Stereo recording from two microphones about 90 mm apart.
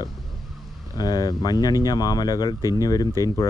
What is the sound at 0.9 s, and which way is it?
Speech, 45° left (ahead or behind).